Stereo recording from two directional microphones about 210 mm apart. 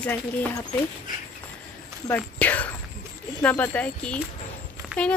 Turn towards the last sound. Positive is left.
turn(degrees=5)  # may be behind; listen again after turning